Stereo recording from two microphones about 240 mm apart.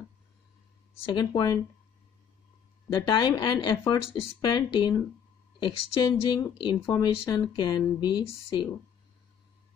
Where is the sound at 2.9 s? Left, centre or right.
Centre.